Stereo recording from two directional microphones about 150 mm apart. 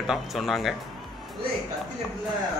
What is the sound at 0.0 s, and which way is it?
Speech, centre (ahead or behind).